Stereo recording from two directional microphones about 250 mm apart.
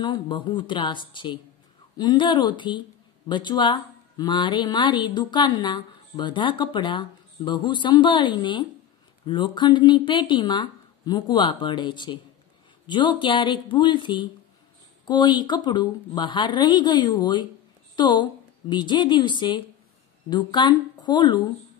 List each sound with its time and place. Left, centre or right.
0.0 s a woman's voice: centre